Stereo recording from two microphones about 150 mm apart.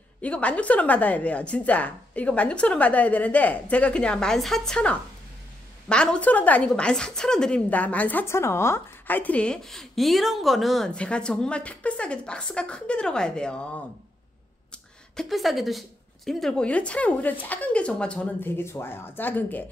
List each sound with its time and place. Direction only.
0.2 s a woman's voice: 10° left (ahead or behind)
15.1 s a woman's voice: centre (ahead or behind)